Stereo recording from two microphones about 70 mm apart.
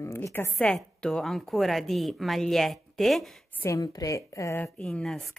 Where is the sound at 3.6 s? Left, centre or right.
Left.